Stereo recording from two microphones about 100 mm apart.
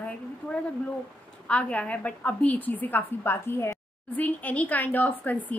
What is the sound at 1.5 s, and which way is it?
A woman's voice, 15° left (ahead or behind).